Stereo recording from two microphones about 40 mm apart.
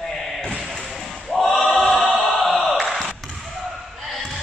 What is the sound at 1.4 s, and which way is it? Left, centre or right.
Choir, centre.